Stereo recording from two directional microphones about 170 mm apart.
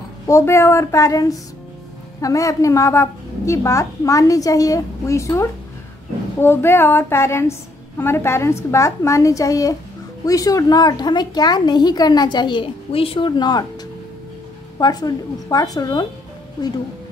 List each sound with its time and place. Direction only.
0.3 s a woman's voice: 15° left (ahead or behind)
14.8 s speech: 25° left (ahead or behind)